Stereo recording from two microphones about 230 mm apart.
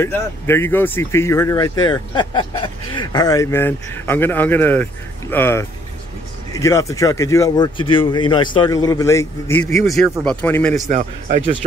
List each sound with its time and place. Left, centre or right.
0.0 s speech: centre
10.8 s a man's voice: right